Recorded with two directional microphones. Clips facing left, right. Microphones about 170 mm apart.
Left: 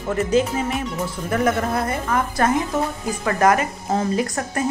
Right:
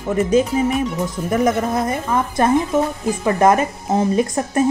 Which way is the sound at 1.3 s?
20° right (ahead or behind).